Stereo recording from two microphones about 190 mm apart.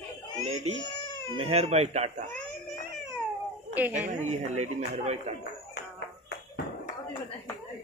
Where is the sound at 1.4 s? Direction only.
30° right (ahead or behind).